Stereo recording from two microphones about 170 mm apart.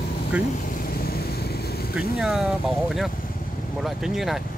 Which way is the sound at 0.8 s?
60° left (ahead or behind).